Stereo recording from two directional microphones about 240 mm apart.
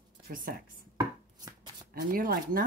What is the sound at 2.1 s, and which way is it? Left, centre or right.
Speech, right.